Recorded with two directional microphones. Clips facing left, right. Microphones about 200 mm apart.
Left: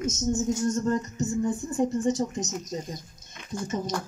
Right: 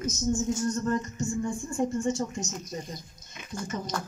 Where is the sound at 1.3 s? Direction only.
5° left (ahead or behind).